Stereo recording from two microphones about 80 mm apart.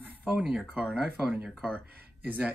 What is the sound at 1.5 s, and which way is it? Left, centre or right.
Speech, centre.